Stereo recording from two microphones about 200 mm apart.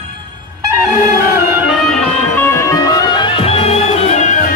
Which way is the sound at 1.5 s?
Centre (ahead or behind).